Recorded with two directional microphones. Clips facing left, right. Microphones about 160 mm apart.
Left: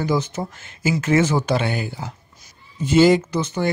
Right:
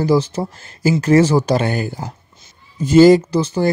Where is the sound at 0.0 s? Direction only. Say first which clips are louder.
Right 6 dB; 35° right (ahead or behind).